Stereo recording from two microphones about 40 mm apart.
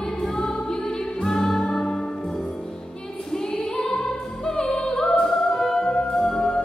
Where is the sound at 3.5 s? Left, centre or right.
Left.